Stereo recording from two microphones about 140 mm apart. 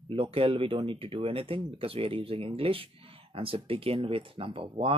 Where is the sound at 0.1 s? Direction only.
40° right (ahead or behind).